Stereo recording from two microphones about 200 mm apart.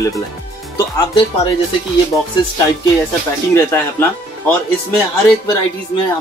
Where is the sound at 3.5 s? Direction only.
10° left (ahead or behind).